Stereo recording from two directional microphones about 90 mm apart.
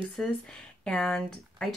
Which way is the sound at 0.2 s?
10° left (ahead or behind).